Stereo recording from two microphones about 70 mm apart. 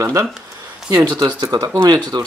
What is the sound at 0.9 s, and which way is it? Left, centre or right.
Speech, right.